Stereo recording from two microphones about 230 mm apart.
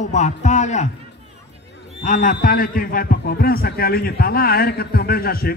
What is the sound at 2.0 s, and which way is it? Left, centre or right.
A man's voice, left.